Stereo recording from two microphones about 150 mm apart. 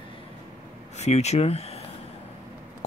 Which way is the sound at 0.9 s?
45° left (ahead or behind).